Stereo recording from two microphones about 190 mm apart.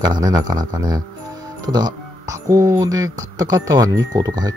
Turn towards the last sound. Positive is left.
turn(degrees=-20)  # may be behind; listen again after turning